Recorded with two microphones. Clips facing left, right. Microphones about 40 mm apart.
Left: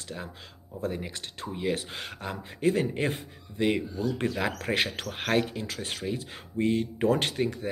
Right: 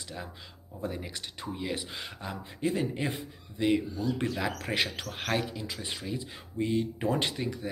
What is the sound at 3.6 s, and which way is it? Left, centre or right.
Speech, left.